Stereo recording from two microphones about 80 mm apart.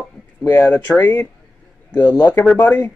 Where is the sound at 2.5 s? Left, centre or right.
Left.